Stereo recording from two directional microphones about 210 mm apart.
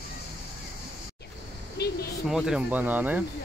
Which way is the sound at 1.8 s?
50° left (ahead or behind).